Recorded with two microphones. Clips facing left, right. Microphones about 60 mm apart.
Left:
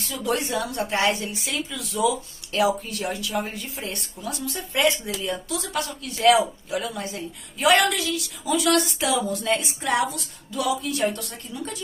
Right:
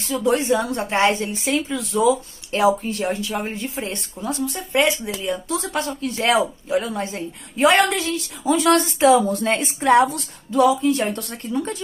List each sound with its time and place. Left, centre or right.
0.2 s speech: right